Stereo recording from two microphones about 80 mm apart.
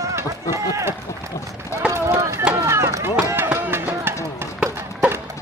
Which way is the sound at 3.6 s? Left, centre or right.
Right.